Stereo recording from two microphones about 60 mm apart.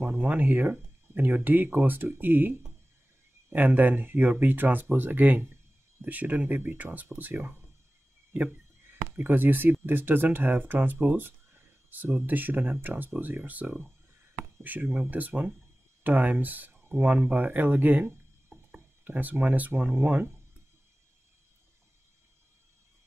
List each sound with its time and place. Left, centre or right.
0.0 s speech: right
8.3 s a sound: right
9.1 s speech: right
18.5 s music: right
19.0 s speech: right